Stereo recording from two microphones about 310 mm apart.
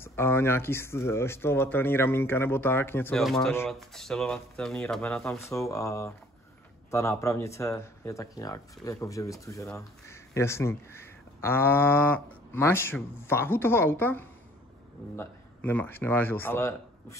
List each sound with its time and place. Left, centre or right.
0.0 s speech: centre